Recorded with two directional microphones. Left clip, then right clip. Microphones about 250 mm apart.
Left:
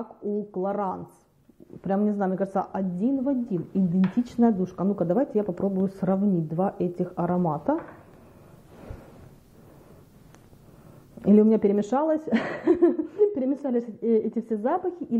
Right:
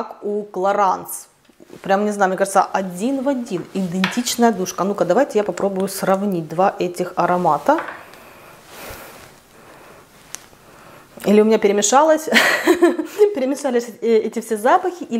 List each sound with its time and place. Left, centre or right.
0.0 s speech: right
0.7 s speech: centre
8.7 s a sound: centre
11.1 s speech: centre